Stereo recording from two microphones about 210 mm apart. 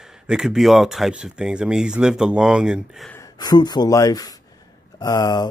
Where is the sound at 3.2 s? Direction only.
20° left (ahead or behind).